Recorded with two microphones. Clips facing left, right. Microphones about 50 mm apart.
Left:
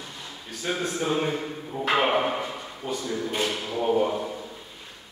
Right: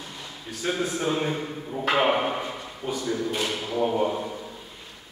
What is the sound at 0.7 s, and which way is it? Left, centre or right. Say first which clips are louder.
Speech: right 1 dB; centre.